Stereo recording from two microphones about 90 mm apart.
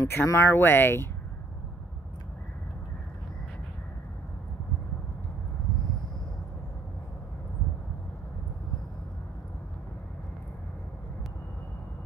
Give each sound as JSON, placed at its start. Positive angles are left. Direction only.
{"t": 0.0, "sound": "speech", "side_deg": 30}